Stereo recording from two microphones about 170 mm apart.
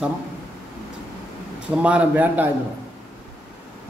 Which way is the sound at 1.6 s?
5° right (ahead or behind).